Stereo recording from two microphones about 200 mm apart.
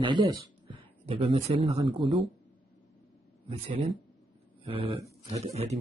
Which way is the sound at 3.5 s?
30° right (ahead or behind).